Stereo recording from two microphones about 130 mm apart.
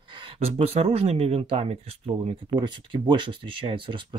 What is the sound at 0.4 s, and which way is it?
Speech, 50° right (ahead or behind).